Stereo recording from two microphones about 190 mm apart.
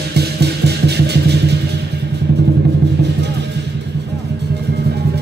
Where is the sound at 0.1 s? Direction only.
60° right (ahead or behind).